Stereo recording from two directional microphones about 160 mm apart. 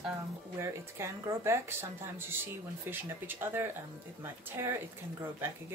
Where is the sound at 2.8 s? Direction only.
15° right (ahead or behind).